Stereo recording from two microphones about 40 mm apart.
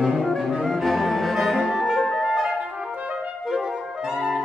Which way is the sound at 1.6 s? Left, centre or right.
Centre.